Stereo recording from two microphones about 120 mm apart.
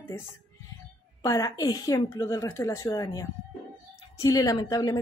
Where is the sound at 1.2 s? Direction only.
25° left (ahead or behind).